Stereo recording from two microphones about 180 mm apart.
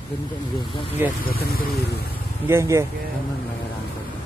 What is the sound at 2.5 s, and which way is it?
Speech, 15° right (ahead or behind).